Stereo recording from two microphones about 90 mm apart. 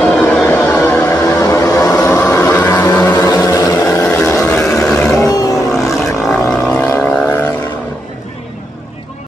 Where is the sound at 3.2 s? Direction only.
35° left (ahead or behind).